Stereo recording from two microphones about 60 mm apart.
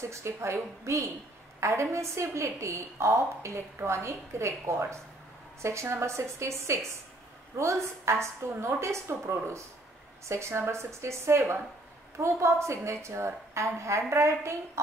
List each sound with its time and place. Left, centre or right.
0.0 s a woman's voice: right